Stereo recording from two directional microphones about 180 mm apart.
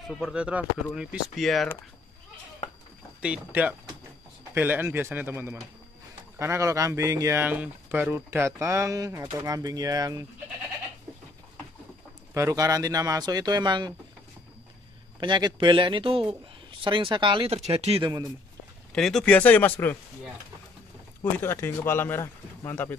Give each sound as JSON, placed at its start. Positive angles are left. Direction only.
{"t": 0.1, "sound": "speech", "side_deg": -5}
{"t": 3.2, "sound": "speech", "side_deg": -5}
{"t": 12.4, "sound": "speech", "side_deg": -15}
{"t": 15.1, "sound": "speech", "side_deg": -25}
{"t": 18.9, "sound": "speech", "side_deg": 0}
{"t": 21.2, "sound": "speech", "side_deg": 15}